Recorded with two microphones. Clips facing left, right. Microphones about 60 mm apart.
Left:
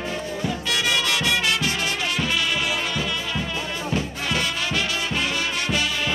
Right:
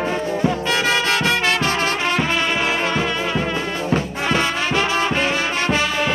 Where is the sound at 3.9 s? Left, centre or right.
Right.